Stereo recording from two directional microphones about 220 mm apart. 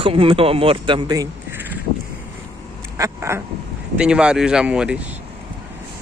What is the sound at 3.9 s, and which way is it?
Speech, 5° right (ahead or behind).